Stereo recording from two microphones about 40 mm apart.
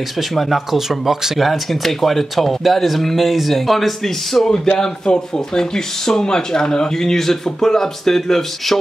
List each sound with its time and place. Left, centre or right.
0.3 s speech: centre
4.7 s speech: centre